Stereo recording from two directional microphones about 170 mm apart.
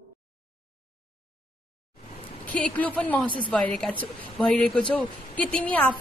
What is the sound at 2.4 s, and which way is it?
Speech, 10° left (ahead or behind).